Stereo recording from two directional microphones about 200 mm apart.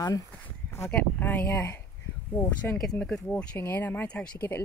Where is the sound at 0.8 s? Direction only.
5° left (ahead or behind).